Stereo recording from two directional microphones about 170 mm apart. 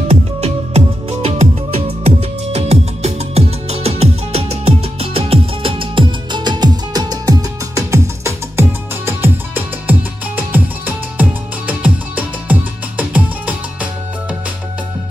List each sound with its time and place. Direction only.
0.1 s music: 40° right (ahead or behind); by 13.6 s 10° right (ahead or behind)